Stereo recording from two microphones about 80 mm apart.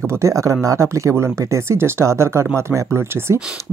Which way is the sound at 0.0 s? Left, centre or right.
Right.